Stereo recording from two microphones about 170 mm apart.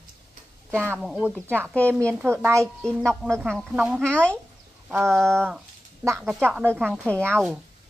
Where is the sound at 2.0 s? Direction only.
15° right (ahead or behind).